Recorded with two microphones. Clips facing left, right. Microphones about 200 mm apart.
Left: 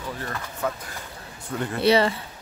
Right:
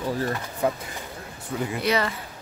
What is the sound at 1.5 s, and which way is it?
Speech, 5° right (ahead or behind).